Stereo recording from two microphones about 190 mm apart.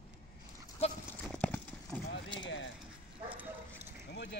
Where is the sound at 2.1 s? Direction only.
75° left (ahead or behind).